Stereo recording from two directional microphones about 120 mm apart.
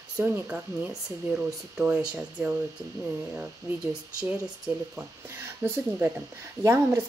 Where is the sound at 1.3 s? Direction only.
10° right (ahead or behind).